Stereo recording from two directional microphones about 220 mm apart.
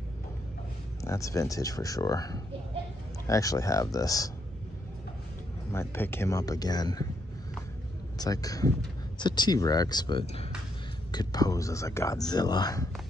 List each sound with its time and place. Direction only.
1.0 s speech: 15° left (ahead or behind)
5.7 s speech: 10° left (ahead or behind)
8.2 s speech: 15° left (ahead or behind)